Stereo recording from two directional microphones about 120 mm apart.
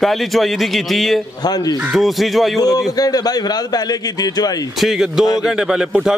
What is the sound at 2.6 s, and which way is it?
A man's voice, 30° left (ahead or behind).